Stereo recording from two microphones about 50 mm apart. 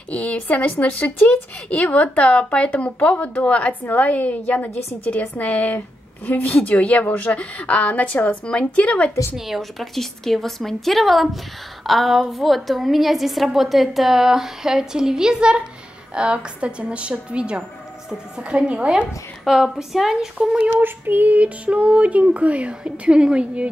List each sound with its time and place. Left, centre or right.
0.1 s a woman's voice: left
9.5 s a woman's voice: centre
16.2 s child singing: right
19.4 s speech: centre
20.8 s child singing: right